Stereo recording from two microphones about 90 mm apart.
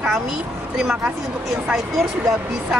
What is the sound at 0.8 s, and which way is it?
Speech, 10° right (ahead or behind).